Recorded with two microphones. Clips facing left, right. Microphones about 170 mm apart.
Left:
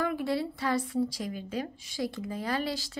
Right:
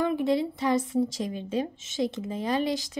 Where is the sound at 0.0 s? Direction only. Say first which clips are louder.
Right 5 dB; 20° right (ahead or behind).